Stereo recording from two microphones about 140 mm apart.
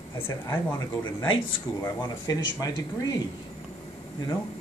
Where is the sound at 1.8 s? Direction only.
30° left (ahead or behind).